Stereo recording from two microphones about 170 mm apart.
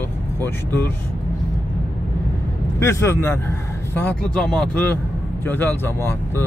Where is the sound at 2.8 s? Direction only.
15° left (ahead or behind).